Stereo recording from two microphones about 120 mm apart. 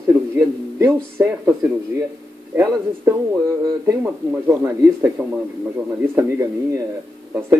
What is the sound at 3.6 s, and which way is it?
Speech, 25° right (ahead or behind).